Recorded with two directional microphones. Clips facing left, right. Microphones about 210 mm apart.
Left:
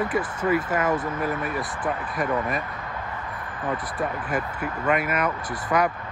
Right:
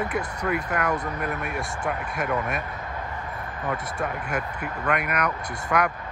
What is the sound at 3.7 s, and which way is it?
Speech, centre (ahead or behind).